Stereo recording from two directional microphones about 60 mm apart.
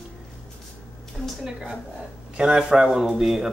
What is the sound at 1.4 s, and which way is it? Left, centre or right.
Speech, centre.